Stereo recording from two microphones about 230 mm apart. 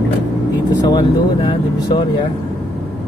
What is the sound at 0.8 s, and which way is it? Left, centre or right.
Speech, centre.